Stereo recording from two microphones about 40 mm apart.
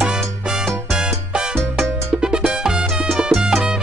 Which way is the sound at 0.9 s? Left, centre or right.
Centre.